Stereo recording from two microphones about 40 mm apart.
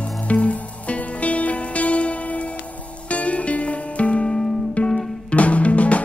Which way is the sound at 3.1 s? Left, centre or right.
Left.